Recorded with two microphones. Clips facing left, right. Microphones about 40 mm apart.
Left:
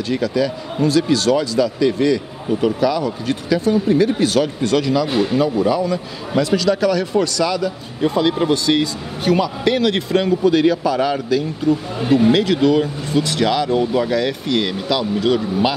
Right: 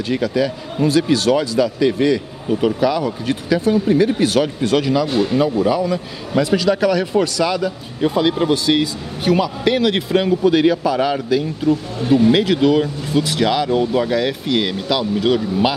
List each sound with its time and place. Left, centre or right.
0.1 s a man's voice: centre
5.0 s speech: centre
5.4 s a man's voice: centre